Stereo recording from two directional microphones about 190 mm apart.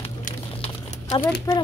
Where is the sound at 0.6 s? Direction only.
30° left (ahead or behind).